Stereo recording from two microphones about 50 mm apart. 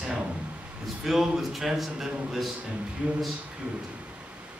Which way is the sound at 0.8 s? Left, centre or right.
Centre.